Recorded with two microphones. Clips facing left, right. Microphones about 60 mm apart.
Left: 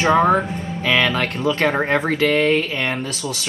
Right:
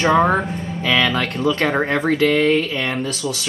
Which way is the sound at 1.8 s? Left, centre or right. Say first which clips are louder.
Right 1 dB; left.